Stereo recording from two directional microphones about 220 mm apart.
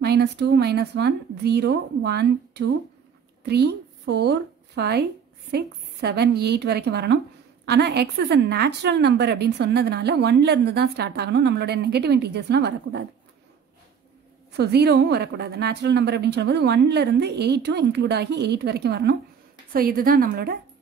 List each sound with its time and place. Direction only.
0.0 s a woman's voice: 50° right (ahead or behind)
14.6 s a woman's voice: 50° right (ahead or behind)